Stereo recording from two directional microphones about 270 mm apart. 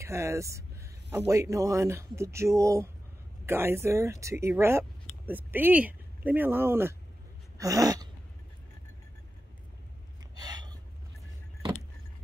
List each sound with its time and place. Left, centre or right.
0.0 s speech: centre
7.5 s a sound: centre
10.3 s gasp: centre